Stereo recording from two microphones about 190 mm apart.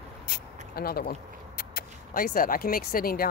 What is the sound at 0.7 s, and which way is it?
Speech, 55° left (ahead or behind).